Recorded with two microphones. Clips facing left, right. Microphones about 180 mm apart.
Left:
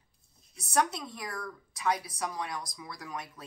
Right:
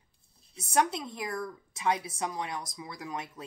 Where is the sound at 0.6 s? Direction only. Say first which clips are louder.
Right 1 dB; 25° right (ahead or behind).